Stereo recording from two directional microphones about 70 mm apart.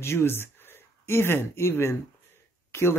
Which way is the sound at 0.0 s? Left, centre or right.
Left.